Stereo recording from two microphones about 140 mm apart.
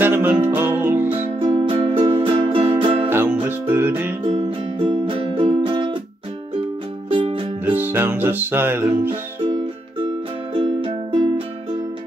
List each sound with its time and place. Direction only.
0.0 s music: 15° right (ahead or behind)
1.4 s music: 40° right (ahead or behind)
3.1 s music: 15° right (ahead or behind)
4.5 s music: 40° right (ahead or behind)
7.1 s music: 40° right (ahead or behind)
7.6 s music: 15° right (ahead or behind)
10.5 s music: 35° right (ahead or behind)